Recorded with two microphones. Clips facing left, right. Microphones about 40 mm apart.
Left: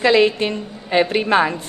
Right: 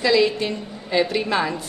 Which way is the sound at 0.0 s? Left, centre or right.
Left.